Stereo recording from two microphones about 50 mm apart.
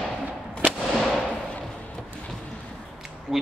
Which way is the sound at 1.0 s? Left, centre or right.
Centre.